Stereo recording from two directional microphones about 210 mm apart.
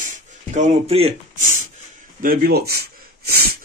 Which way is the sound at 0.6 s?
30° right (ahead or behind).